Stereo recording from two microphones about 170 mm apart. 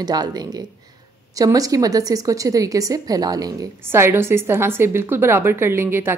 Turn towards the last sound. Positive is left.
turn(degrees=-15)  # may be behind; listen again after turning